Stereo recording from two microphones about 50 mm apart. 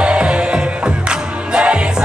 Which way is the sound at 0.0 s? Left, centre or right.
Centre.